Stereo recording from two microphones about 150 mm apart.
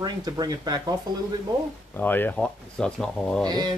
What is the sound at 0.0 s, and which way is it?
Speech, 25° right (ahead or behind).